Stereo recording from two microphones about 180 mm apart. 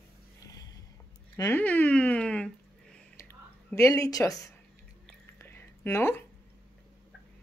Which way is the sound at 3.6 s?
15° left (ahead or behind).